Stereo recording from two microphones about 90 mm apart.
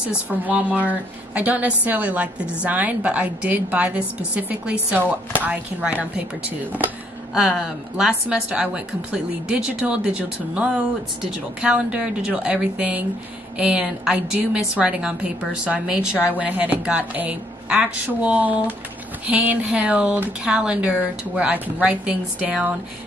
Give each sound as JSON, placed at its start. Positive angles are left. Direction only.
{"t": 0.4, "sound": "a woman's voice", "side_deg": -20}
{"t": 7.3, "sound": "a woman's voice", "side_deg": -5}